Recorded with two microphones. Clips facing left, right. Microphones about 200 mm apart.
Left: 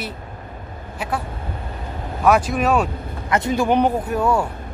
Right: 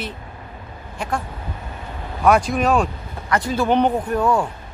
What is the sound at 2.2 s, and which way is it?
Speech, 5° left (ahead or behind).